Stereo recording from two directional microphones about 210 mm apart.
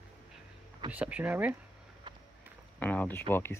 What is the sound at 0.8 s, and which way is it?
Speech, 5° right (ahead or behind).